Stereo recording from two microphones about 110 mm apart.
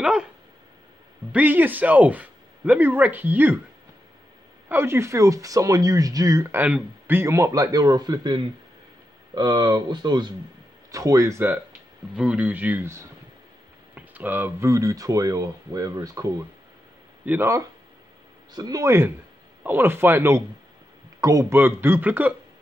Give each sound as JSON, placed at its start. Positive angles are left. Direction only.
{"t": 0.0, "sound": "speech", "side_deg": -5}
{"t": 1.3, "sound": "speech", "side_deg": -15}
{"t": 4.6, "sound": "a man's voice", "side_deg": -20}
{"t": 6.5, "sound": "a man's voice", "side_deg": -15}
{"t": 10.9, "sound": "speech", "side_deg": -30}
{"t": 17.2, "sound": "speech", "side_deg": -15}
{"t": 18.5, "sound": "speech", "side_deg": -35}
{"t": 21.5, "sound": "speech", "side_deg": -20}